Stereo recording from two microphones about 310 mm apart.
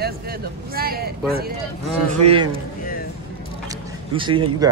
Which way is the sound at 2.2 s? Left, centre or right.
Centre.